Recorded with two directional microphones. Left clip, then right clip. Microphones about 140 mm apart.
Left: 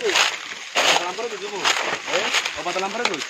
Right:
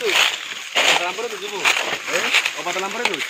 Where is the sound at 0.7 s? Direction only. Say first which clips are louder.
Right 2 dB; centre (ahead or behind).